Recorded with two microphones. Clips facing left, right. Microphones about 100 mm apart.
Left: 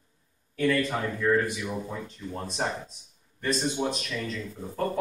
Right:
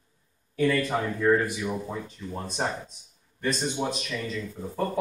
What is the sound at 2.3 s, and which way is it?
Speech, centre (ahead or behind).